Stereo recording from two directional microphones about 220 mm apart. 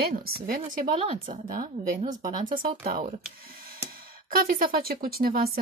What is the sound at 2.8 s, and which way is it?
Speech, 40° right (ahead or behind).